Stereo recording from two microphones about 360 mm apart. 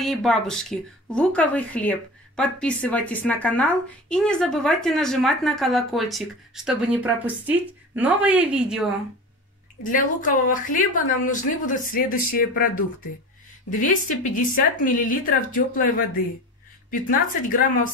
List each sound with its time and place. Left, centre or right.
0.0 s speech: centre
9.8 s a woman's voice: left
17.1 s a woman's voice: left